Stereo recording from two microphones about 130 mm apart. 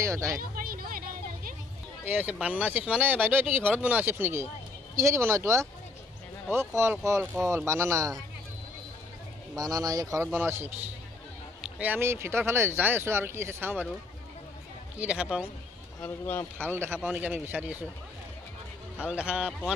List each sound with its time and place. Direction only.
0.0 s speech: 25° right (ahead or behind)
0.4 s a sound: 90° right
2.0 s speech: 15° right (ahead or behind)
9.6 s speech: 30° right (ahead or behind)
15.0 s speech: 10° right (ahead or behind)
16.0 s speech: 15° left (ahead or behind)
16.5 s speech: 15° right (ahead or behind)
18.9 s speech: 10° right (ahead or behind)